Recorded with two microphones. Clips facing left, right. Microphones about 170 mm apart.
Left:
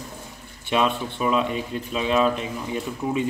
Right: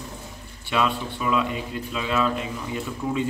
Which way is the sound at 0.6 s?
20° left (ahead or behind).